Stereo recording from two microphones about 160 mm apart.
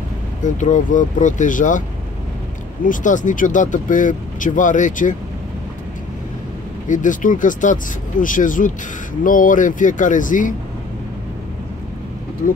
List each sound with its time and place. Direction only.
0.4 s speech: 50° left (ahead or behind)
2.8 s speech: 55° left (ahead or behind)
6.9 s speech: 55° left (ahead or behind)